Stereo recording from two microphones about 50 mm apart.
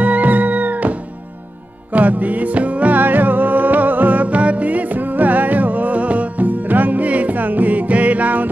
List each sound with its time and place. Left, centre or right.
0.0 s music: right